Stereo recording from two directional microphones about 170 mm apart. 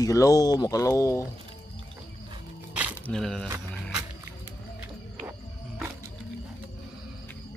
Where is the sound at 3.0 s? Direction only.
5° left (ahead or behind).